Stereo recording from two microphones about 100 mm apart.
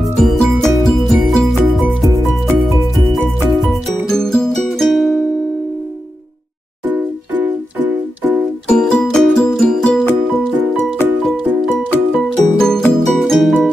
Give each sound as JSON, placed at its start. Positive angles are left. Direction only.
{"t": 0.2, "sound": "music", "side_deg": 0}
{"t": 4.1, "sound": "music", "side_deg": 5}
{"t": 6.9, "sound": "music", "side_deg": -15}
{"t": 8.6, "sound": "music", "side_deg": 10}
{"t": 12.1, "sound": "music", "side_deg": 5}